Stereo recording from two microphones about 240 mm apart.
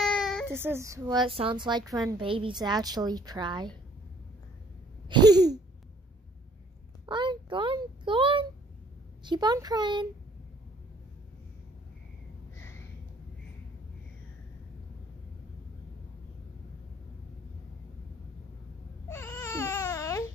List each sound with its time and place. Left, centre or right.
0.0 s baby cry: centre
0.5 s a woman's voice: centre
5.1 s a woman's voice: centre
7.1 s a sound: centre
9.2 s a woman's voice: centre
12.5 s a sound: centre
19.0 s baby cry: centre